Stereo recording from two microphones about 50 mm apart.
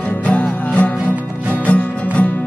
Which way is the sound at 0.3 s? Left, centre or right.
Left.